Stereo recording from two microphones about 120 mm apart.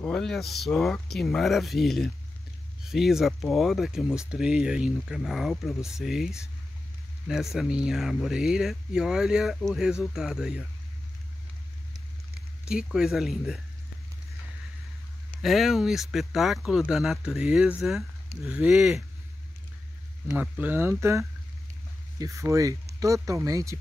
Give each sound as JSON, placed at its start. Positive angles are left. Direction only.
{"t": 0.0, "sound": "speech", "side_deg": 5}
{"t": 12.8, "sound": "speech", "side_deg": -5}
{"t": 15.4, "sound": "speech", "side_deg": 0}
{"t": 20.2, "sound": "speech", "side_deg": -15}